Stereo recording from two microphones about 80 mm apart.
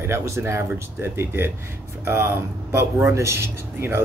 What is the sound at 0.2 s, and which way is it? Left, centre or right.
A man's voice, right.